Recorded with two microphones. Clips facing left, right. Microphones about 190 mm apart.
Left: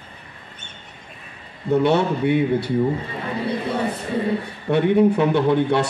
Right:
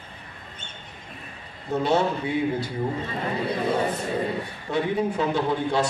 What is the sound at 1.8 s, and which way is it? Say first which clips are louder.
Speech: left 2 dB; 65° left (ahead or behind).